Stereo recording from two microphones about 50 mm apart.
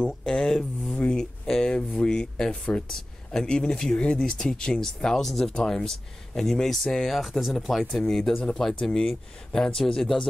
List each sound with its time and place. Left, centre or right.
0.0 s speech: centre